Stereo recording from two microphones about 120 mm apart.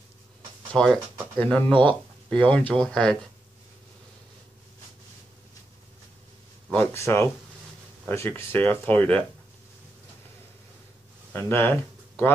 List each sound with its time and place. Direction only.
0.7 s speech: 5° left (ahead or behind)
6.7 s speech: 10° left (ahead or behind)
7.0 s speech: 25° left (ahead or behind)
11.3 s speech: 20° left (ahead or behind)